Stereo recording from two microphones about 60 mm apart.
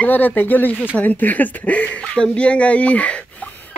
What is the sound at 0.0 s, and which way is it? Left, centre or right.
Speech, left.